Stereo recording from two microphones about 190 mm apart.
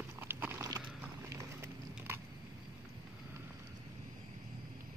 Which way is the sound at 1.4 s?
15° right (ahead or behind).